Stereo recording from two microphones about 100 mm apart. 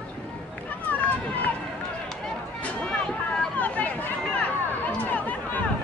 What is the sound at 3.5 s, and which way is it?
Speech, 15° left (ahead or behind).